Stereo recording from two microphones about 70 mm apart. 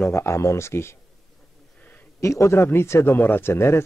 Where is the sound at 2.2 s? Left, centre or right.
Left.